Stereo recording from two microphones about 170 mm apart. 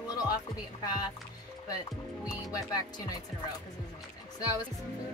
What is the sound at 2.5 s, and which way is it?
Speech, 20° left (ahead or behind).